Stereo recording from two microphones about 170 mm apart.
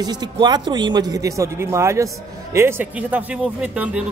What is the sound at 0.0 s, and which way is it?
Speech, 25° right (ahead or behind).